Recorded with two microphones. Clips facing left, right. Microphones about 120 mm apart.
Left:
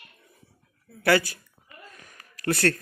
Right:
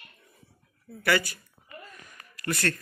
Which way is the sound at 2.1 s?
65° left (ahead or behind).